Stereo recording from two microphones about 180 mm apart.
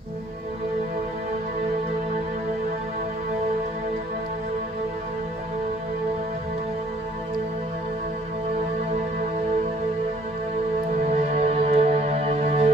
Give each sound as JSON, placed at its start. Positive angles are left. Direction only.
{"t": 11.3, "sound": "music", "side_deg": -35}